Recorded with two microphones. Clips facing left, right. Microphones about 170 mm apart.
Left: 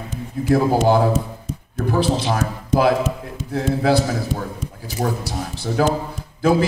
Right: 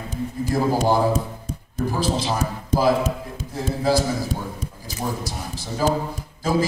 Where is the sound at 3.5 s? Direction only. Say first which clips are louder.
Left 3 dB; 65° left (ahead or behind).